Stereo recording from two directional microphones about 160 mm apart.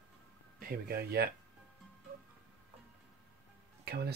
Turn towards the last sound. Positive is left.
turn(degrees=-85)